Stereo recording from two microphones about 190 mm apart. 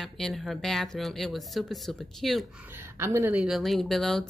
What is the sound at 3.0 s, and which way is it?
Speech, 15° right (ahead or behind).